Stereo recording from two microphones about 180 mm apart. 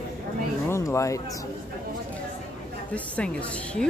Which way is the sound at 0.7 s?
15° left (ahead or behind).